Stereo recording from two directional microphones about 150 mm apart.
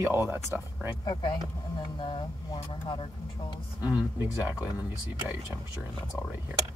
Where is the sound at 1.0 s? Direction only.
30° left (ahead or behind).